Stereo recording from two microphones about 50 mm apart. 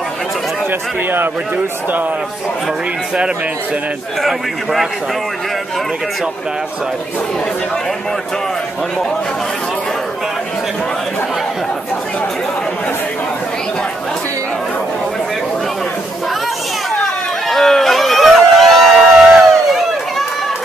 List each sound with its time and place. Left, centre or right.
0.7 s speech: right
4.2 s a man's voice: centre
17.5 s a sound: centre
18.9 s crowd: centre